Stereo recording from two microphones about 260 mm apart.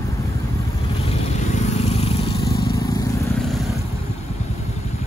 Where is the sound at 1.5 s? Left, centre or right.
Left.